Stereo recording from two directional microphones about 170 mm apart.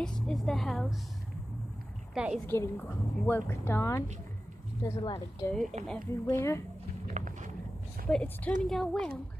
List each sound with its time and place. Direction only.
0.0 s a woman's voice: 5° left (ahead or behind)
2.1 s a woman's voice: 5° right (ahead or behind)
2.4 s a woman's voice: 10° left (ahead or behind)
5.5 s a woman's voice: centre (ahead or behind)
6.2 s a woman's voice: 15° left (ahead or behind)
7.1 s a sound: 45° right (ahead or behind)
8.1 s a woman's voice: 5° left (ahead or behind)